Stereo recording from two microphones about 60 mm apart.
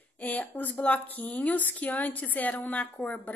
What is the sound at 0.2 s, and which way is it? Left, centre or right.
A woman's voice, left.